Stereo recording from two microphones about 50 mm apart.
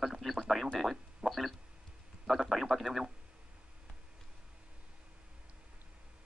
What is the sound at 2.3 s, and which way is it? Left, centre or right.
Speech, centre.